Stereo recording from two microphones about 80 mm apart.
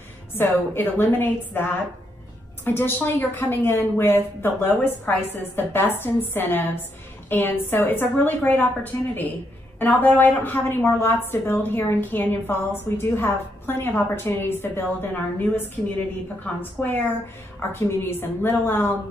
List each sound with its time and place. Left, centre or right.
0.3 s a woman's voice: left
16.8 s a woman's voice: left